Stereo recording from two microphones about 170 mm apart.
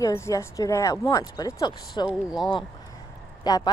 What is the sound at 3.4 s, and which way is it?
Speech, 25° left (ahead or behind).